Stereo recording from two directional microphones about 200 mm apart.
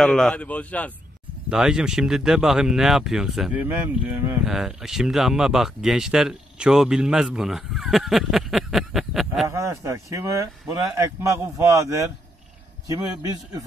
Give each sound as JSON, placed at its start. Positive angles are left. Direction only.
{"t": 0.0, "sound": "a man's voice", "side_deg": 5}
{"t": 9.5, "sound": "speech", "side_deg": -15}